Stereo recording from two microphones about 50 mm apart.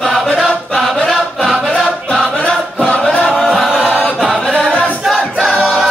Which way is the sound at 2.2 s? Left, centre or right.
Left.